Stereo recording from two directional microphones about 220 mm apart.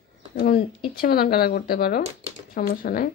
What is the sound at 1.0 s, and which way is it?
Speech, 45° left (ahead or behind).